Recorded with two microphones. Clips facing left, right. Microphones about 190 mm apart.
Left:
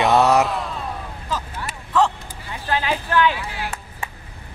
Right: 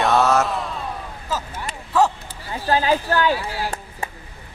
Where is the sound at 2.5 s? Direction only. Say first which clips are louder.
Right 4 dB; 35° right (ahead or behind).